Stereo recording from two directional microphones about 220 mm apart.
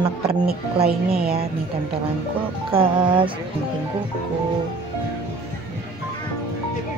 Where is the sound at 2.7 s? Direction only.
25° right (ahead or behind).